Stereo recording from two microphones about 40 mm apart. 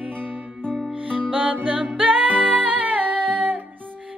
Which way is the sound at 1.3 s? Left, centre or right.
Right.